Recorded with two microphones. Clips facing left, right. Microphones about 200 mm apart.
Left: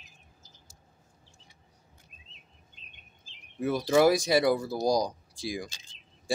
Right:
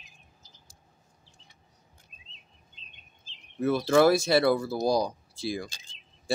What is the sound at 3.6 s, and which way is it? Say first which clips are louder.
Speech: right 2 dB; 15° left (ahead or behind).